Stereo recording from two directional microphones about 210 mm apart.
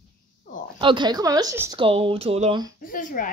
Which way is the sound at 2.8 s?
40° left (ahead or behind).